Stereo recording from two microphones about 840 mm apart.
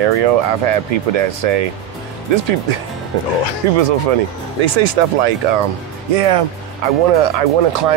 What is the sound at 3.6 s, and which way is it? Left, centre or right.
Speech, right.